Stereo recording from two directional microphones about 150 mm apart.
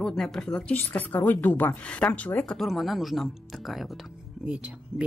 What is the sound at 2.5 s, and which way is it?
A woman's voice, centre (ahead or behind).